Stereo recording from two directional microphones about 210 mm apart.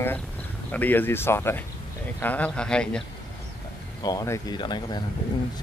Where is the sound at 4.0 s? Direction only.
15° left (ahead or behind).